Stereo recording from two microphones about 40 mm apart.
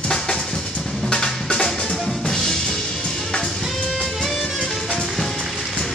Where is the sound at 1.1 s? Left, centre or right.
Centre.